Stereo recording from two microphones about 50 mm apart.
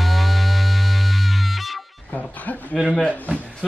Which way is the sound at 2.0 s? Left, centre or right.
Left.